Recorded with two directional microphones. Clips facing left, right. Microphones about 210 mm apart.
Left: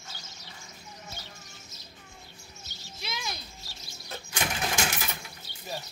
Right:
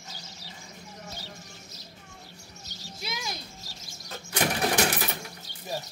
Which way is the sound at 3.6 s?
40° right (ahead or behind).